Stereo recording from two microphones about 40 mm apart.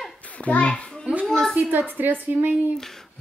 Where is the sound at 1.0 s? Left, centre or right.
Right.